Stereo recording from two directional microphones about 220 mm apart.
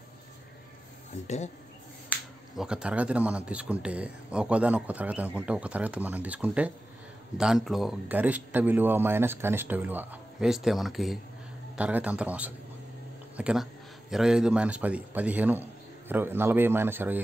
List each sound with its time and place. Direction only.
1.2 s speech: 30° left (ahead or behind)
2.0 s speech: centre (ahead or behind)